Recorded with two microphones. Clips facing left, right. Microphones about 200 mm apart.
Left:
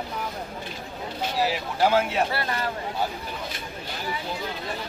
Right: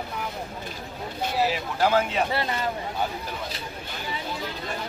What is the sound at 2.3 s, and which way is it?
Speech, 25° right (ahead or behind).